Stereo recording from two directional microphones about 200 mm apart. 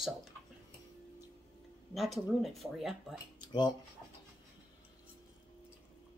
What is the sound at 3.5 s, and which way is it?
Speech, 20° left (ahead or behind).